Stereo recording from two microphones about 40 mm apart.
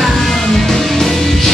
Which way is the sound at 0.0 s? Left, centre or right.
Centre.